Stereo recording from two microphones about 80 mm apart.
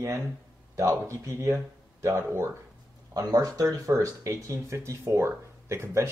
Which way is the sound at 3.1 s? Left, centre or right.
Right.